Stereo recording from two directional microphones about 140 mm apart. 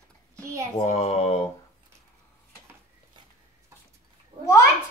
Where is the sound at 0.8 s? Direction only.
55° left (ahead or behind).